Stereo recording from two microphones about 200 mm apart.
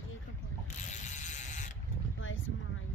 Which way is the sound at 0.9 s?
35° left (ahead or behind).